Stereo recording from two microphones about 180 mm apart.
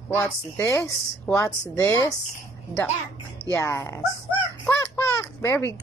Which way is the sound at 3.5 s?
15° left (ahead or behind).